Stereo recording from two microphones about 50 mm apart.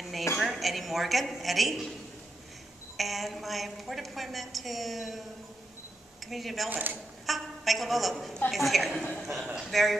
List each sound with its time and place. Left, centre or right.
0.4 s speech: centre
3.0 s a woman's voice: centre
6.2 s a woman's voice: centre
6.7 s speech: right
7.2 s a woman's voice: centre